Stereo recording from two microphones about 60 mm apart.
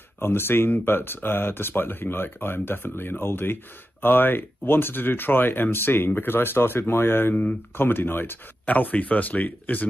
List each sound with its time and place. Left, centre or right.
0.2 s speech: left
8.6 s speech: left